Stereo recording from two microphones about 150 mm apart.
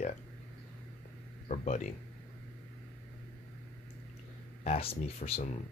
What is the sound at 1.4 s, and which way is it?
Speech, 50° left (ahead or behind).